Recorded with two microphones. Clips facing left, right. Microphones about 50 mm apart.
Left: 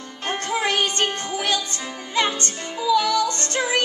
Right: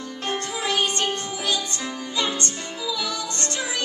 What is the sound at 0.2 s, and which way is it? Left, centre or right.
Music, left.